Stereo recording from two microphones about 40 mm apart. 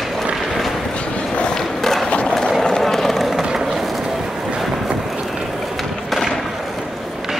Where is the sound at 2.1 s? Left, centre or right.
Left.